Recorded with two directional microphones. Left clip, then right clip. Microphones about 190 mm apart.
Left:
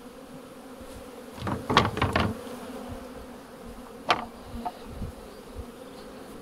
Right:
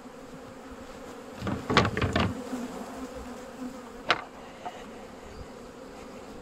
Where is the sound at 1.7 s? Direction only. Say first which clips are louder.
Left 2 dB; 5° right (ahead or behind).